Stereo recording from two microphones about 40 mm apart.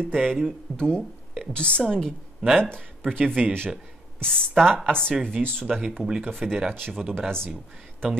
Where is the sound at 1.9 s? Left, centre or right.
Centre.